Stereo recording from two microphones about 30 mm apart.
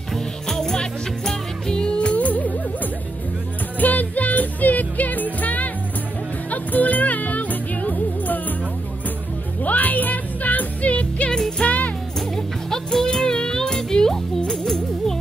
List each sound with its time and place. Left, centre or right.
0.5 s music: centre
2.1 s music: left
9.6 s music: left
10.9 s music: left
12.4 s music: centre